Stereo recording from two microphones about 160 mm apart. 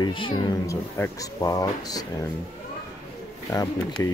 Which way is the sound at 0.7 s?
20° left (ahead or behind).